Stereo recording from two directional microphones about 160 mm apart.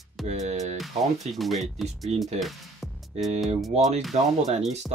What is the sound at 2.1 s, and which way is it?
Speech, 40° right (ahead or behind).